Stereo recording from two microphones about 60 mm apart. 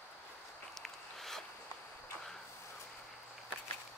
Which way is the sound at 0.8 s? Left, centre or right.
Centre.